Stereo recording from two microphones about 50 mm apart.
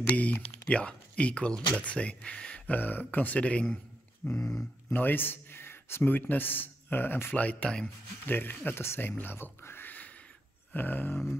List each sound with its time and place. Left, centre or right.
0.1 s speech: left
4.2 s a man's voice: left
7.3 s speech: left
8.3 s speech: left
9.8 s a sound: left